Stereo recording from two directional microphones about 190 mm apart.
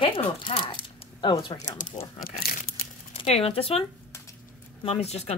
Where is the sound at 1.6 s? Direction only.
40° left (ahead or behind).